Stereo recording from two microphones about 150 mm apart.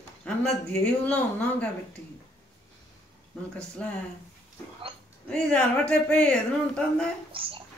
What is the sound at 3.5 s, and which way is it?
Speech, 10° left (ahead or behind).